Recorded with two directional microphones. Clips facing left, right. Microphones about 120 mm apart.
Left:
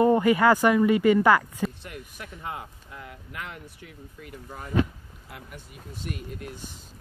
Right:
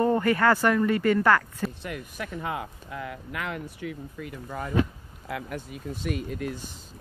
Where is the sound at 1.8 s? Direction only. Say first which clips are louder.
Right 6 dB; 90° right.